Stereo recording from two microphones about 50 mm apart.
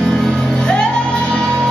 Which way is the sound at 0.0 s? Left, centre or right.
Centre.